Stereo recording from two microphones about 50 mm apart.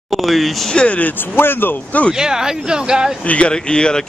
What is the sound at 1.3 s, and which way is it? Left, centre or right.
Speech, left.